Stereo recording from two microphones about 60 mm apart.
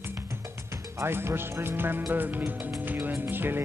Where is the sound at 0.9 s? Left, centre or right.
Right.